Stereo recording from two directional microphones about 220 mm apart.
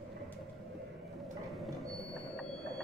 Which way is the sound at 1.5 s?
Centre (ahead or behind).